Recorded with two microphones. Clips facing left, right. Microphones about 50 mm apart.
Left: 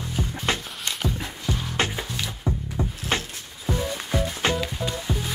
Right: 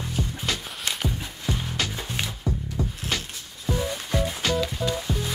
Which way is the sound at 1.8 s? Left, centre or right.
Left.